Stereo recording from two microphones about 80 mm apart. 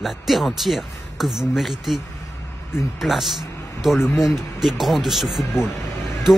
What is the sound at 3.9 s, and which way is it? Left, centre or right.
Speech, left.